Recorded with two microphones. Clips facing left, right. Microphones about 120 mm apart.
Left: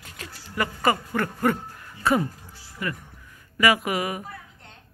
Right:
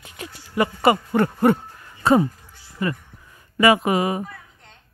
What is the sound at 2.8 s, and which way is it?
Speech, 30° right (ahead or behind).